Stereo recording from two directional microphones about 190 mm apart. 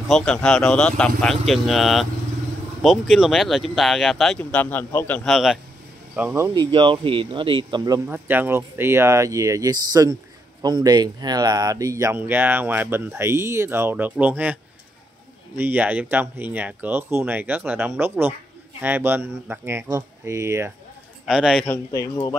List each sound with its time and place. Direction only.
0.1 s speech: 5° left (ahead or behind)
6.1 s speech: 10° right (ahead or behind)
21.3 s speech: 5° right (ahead or behind)
21.6 s speech: 15° left (ahead or behind)